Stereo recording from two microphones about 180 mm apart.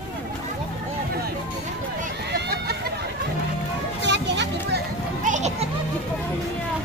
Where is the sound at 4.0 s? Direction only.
75° right (ahead or behind).